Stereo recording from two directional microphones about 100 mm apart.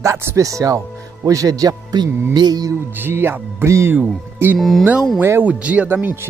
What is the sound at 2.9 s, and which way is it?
Speech, 20° right (ahead or behind).